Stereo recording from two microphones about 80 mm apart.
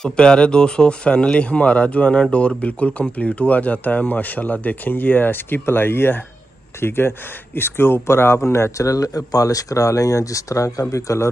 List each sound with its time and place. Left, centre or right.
0.0 s speech: centre; by 11.2 s left